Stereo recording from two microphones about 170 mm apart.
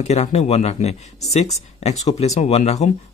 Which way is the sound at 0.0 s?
40° left (ahead or behind).